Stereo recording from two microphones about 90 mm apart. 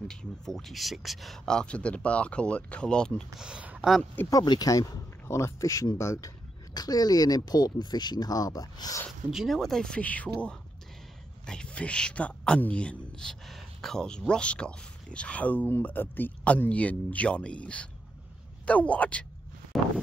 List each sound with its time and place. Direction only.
0.1 s a man's voice: 5° left (ahead or behind)
3.3 s speech: 10° right (ahead or behind)
4.3 s speech: 45° left (ahead or behind)
6.7 s speech: 45° left (ahead or behind)
9.3 s a man's voice: centre (ahead or behind); by 19.2 s 15° left (ahead or behind)
19.7 s a sound: centre (ahead or behind)